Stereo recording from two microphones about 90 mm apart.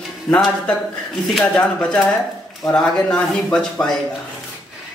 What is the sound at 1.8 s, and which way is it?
Speech, 10° left (ahead or behind).